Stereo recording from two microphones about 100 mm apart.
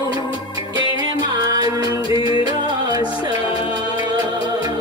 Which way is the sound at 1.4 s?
40° right (ahead or behind).